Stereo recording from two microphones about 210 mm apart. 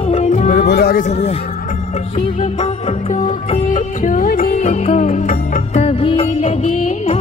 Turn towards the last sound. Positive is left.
turn(degrees=35)  # may be behind; listen again after turning